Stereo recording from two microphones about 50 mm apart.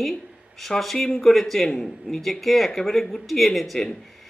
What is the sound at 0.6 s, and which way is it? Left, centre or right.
A man's voice, centre.